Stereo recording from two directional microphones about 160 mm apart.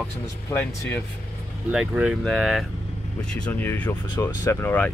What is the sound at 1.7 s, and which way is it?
Speech, 5° right (ahead or behind).